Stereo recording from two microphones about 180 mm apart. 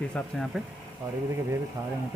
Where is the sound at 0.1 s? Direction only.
Centre (ahead or behind).